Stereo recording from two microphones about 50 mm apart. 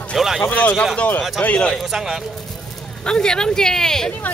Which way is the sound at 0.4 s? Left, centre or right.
Left.